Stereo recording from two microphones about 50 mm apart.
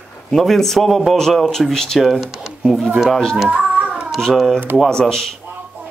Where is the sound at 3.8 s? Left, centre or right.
Centre.